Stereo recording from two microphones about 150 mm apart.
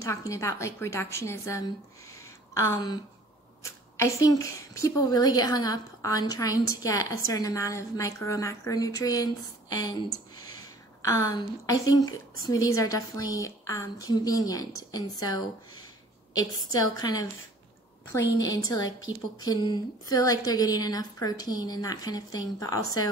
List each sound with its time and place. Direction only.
0.0 s a woman's voice: 20° left (ahead or behind)
16.9 s a woman's voice: 25° left (ahead or behind)